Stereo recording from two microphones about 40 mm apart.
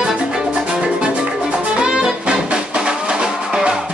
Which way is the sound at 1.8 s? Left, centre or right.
Centre.